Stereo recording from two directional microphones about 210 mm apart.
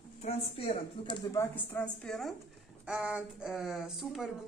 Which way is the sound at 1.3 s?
10° left (ahead or behind).